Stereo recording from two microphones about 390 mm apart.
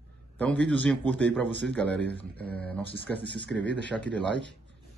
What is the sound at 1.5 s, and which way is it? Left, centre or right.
Speech, right.